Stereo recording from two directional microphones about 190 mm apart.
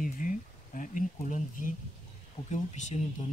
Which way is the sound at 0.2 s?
45° left (ahead or behind).